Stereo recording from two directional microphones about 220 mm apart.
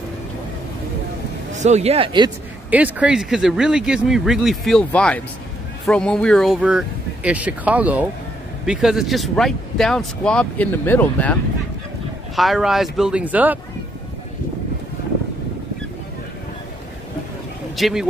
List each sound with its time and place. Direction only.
1.5 s speech: 30° right (ahead or behind)
2.7 s speech: 5° right (ahead or behind)
12.4 s speech: centre (ahead or behind)
17.7 s speech: centre (ahead or behind)